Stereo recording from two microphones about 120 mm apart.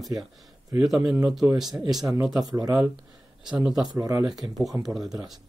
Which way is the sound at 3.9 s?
30° right (ahead or behind).